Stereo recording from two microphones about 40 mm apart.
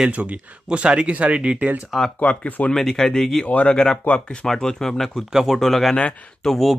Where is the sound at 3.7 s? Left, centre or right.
Centre.